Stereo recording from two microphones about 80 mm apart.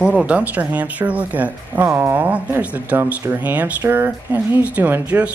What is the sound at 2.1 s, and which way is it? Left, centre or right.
Speech, right.